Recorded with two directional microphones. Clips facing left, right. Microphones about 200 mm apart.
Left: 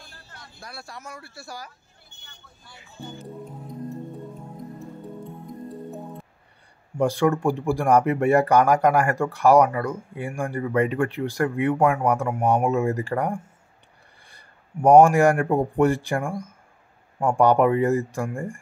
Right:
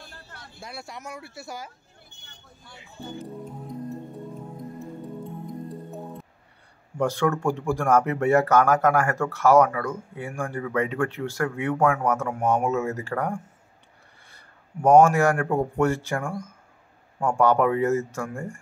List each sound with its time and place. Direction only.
0.6 s speech: 20° right (ahead or behind)
7.0 s speech: 15° left (ahead or behind)